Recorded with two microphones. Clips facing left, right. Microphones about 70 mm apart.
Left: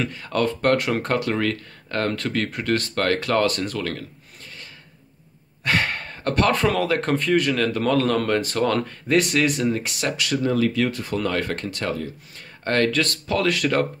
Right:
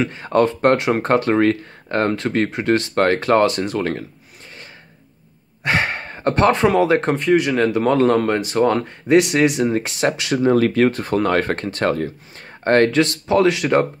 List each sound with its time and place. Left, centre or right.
0.0 s speech: right
5.6 s speech: right
7.2 s speech: centre
7.5 s speech: right
13.0 s speech: right